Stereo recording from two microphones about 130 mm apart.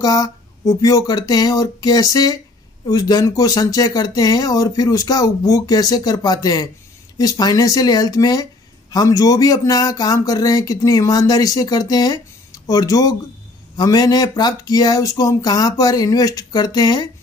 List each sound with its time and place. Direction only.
0.0 s speech: 30° left (ahead or behind)